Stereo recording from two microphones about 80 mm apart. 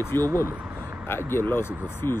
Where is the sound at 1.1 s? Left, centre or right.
Left.